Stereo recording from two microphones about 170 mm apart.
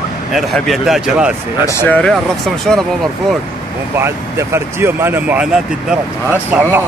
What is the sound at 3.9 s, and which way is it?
Speech, 15° right (ahead or behind).